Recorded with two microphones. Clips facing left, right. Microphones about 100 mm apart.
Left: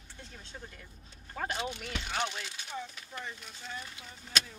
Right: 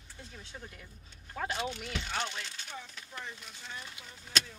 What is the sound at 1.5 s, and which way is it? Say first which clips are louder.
Speech: right 1 dB; 15° left (ahead or behind).